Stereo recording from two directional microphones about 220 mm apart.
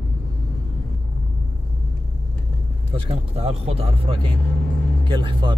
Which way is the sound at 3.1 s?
25° right (ahead or behind).